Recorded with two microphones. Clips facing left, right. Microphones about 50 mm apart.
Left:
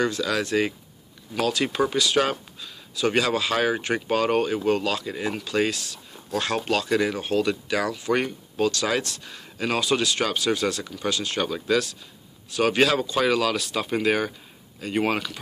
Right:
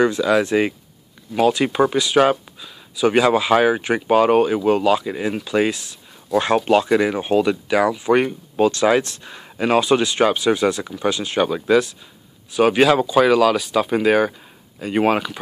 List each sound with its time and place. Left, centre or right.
0.0 s speech: centre